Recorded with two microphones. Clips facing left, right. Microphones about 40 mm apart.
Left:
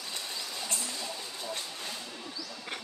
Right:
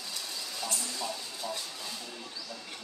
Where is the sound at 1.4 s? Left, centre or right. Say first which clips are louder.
Right 2 dB; centre.